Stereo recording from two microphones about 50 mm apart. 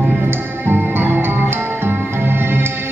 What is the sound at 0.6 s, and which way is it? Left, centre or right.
Music, right.